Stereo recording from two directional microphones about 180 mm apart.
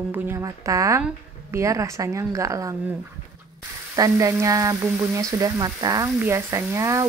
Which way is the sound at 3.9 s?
20° right (ahead or behind).